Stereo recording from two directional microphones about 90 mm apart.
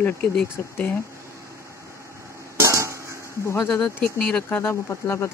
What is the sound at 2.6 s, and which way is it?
Hammer, 35° right (ahead or behind).